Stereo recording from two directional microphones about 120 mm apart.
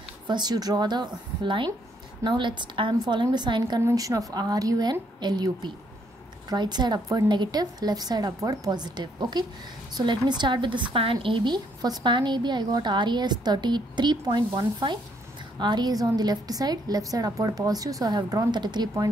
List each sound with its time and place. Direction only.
0.3 s speech: 35° right (ahead or behind)
3.8 s speech: 30° right (ahead or behind)